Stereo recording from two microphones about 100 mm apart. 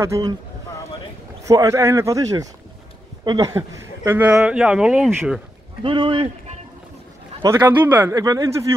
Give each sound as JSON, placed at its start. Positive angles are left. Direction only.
{"t": 0.0, "sound": "speech", "side_deg": -30}
{"t": 1.5, "sound": "speech", "side_deg": -30}
{"t": 4.4, "sound": "speech", "side_deg": -10}
{"t": 5.8, "sound": "speech", "side_deg": -55}
{"t": 7.4, "sound": "speech", "side_deg": -25}
{"t": 8.1, "sound": "speech", "side_deg": -40}